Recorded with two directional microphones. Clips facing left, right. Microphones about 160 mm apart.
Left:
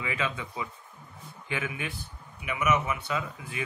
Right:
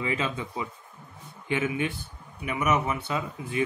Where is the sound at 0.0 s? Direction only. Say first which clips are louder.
Right 3 dB; 30° right (ahead or behind).